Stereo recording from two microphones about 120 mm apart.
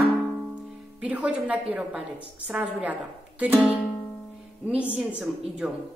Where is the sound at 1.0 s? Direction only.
10° right (ahead or behind).